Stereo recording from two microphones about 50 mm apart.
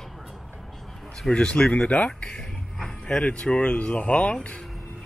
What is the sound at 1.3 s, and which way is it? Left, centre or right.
Speech, centre.